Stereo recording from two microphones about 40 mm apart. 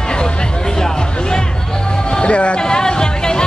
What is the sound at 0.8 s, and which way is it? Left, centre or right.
Music, centre.